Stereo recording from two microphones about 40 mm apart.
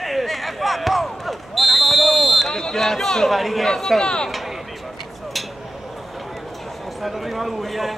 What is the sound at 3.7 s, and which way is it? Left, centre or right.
Speech, centre.